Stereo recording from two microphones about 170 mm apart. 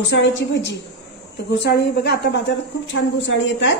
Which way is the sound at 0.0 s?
90° left.